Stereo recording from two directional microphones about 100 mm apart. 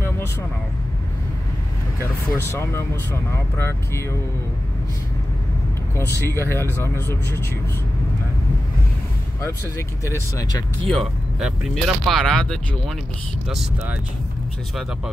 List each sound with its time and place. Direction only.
2.3 s speech: 25° left (ahead or behind)
5.9 s speech: 25° left (ahead or behind)
9.4 s speech: 30° left (ahead or behind)
10.9 s speech: centre (ahead or behind)